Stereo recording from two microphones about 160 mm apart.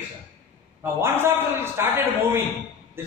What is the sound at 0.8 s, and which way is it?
A man's voice, 15° right (ahead or behind).